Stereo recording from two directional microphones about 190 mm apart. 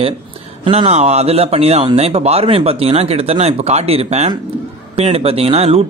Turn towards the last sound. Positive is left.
turn(degrees=-30)  # may be behind; listen again after turning